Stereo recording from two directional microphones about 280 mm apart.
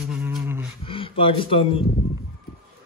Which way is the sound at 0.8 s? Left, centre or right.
Centre.